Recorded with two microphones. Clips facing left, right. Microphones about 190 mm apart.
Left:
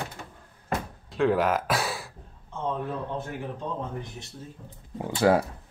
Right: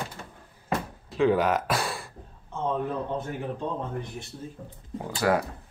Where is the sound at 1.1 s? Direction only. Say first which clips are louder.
Right 1 dB; centre (ahead or behind).